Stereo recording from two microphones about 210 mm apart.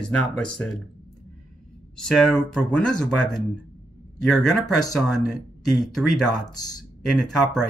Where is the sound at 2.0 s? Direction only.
Centre (ahead or behind).